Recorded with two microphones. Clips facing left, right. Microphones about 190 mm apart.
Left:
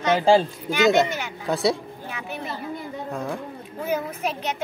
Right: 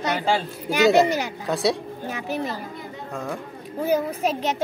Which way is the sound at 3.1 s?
Centre (ahead or behind).